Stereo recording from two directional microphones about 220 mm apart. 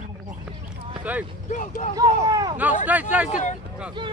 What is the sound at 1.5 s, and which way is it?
Speech, 35° left (ahead or behind).